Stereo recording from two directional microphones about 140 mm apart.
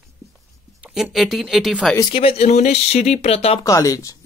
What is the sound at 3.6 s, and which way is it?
Speech, 25° left (ahead or behind).